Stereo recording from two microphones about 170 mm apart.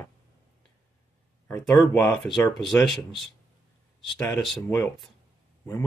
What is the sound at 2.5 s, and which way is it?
Speech, centre (ahead or behind).